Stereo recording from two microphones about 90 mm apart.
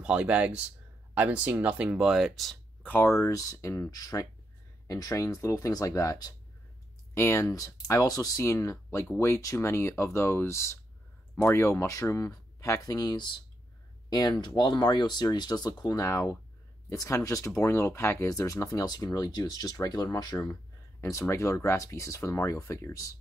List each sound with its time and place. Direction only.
0.0 s speech: 10° right (ahead or behind)
2.8 s speech: 20° left (ahead or behind)
3.1 s speech: 35° left (ahead or behind); by 13.4 s 55° left (ahead or behind)
14.4 s speech: 50° left (ahead or behind)
16.0 s speech: 35° left (ahead or behind)
21.0 s speech: 35° left (ahead or behind)